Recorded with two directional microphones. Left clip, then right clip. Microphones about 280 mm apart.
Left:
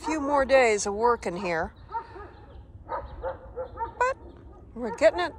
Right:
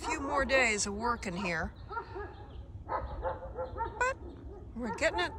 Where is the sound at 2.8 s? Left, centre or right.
Left.